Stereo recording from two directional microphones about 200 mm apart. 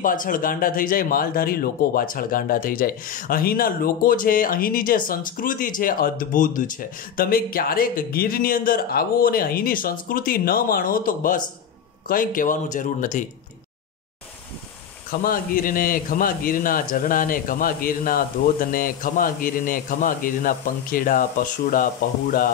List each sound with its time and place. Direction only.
0.0 s speech: 40° left (ahead or behind)
15.0 s speech: 45° left (ahead or behind)